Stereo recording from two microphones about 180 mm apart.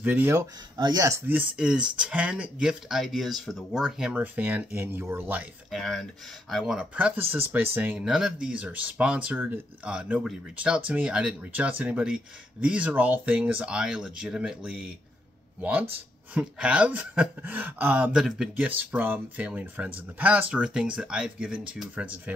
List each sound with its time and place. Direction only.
0.0 s speech: 10° right (ahead or behind)
16.3 s speech: 5° right (ahead or behind)